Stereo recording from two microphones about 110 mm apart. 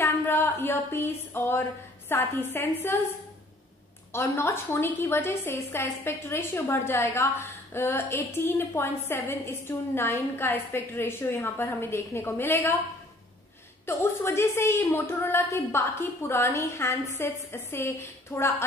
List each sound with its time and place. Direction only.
0.0 s a sound: 20° left (ahead or behind)
2.0 s a woman's voice: 20° left (ahead or behind)
4.1 s a woman's voice: 25° left (ahead or behind)
13.8 s a woman's voice: 20° left (ahead or behind)